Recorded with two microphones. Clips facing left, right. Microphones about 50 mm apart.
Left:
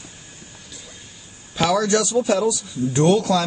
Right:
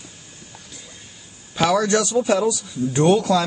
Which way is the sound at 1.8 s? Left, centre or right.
Centre.